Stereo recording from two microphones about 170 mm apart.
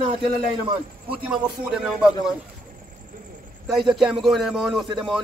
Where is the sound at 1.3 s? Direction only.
5° right (ahead or behind).